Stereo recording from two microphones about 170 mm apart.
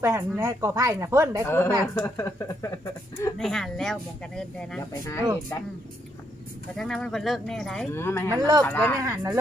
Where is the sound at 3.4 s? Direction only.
Centre (ahead or behind).